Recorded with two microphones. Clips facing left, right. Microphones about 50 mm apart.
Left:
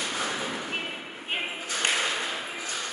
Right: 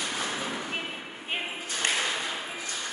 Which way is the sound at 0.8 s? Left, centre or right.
Centre.